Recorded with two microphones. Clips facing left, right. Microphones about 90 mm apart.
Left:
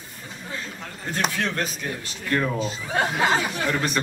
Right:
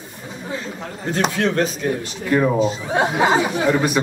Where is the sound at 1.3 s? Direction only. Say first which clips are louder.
Right 9 dB; 5° right (ahead or behind).